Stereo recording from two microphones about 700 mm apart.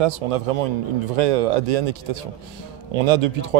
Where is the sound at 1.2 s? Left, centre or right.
Right.